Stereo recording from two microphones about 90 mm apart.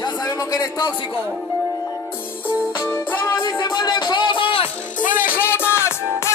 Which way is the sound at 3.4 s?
50° left (ahead or behind).